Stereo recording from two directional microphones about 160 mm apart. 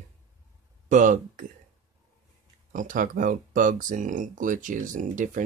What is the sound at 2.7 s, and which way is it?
Speech, 55° right (ahead or behind).